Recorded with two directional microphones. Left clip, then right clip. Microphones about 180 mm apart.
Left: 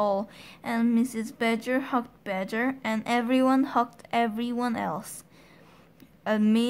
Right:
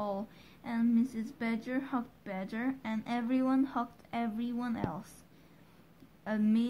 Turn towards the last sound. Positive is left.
turn(degrees=30)  # may be behind; listen again after turning